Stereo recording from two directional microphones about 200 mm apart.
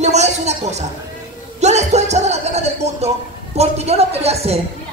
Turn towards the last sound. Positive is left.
turn(degrees=-30)  # may be behind; listen again after turning